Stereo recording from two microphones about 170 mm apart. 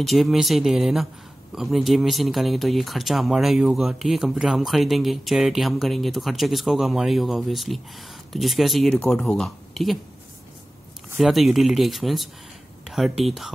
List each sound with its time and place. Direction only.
0.0 s speech: centre (ahead or behind)
11.1 s speech: centre (ahead or behind)